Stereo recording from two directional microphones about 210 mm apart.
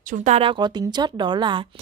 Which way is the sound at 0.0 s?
35° right (ahead or behind).